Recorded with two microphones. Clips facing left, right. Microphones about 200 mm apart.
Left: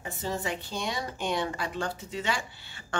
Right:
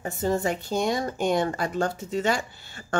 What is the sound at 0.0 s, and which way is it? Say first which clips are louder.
A woman's voice: right 8 dB; 45° right (ahead or behind).